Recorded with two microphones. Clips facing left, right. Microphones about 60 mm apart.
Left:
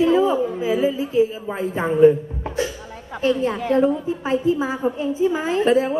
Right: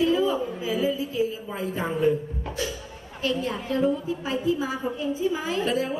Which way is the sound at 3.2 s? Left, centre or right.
Left.